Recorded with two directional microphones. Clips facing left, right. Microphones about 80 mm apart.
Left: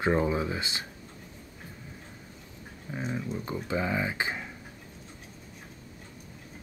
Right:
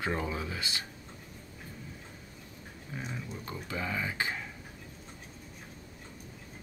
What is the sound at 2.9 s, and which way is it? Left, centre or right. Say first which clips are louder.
Speech: left 7 dB; left.